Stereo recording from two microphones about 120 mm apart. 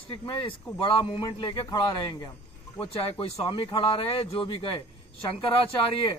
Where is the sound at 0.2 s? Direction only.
45° left (ahead or behind).